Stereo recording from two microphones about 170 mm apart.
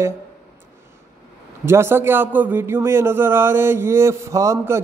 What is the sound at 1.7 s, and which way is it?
A man's voice, 15° right (ahead or behind).